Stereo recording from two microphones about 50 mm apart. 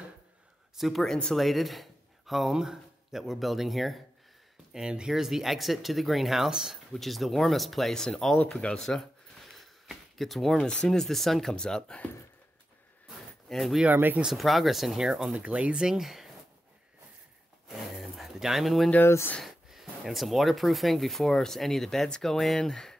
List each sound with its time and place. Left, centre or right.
0.7 s speech: centre
1.0 s speech: centre
1.4 s speech: centre
4.7 s speech: centre
6.9 s speech: centre
8.5 s a sound: centre
10.6 s speech: centre
10.9 s speech: centre
11.5 s speech: centre
13.5 s speech: centre
15.3 s speech: right; by 16.3 s centre
17.6 s a sound: centre
19.4 s speech: centre